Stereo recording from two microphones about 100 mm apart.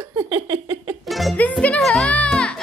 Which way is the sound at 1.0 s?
Centre (ahead or behind).